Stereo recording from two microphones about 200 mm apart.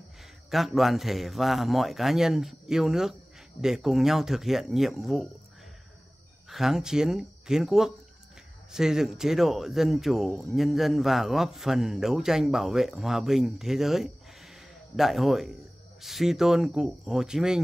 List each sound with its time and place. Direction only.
0.5 s speech: centre (ahead or behind)
6.5 s speech: centre (ahead or behind)